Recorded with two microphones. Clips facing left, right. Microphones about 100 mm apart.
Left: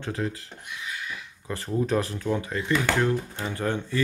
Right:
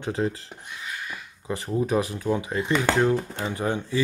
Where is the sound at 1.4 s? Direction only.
15° right (ahead or behind).